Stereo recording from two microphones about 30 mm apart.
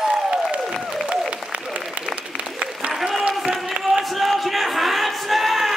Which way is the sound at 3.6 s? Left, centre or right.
Centre.